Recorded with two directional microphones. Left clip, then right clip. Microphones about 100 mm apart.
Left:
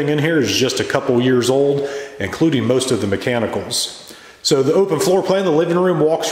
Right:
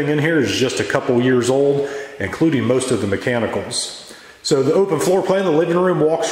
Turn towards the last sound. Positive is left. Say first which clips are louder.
# left 1 dB
turn(degrees=10)  # may be behind; listen again after turning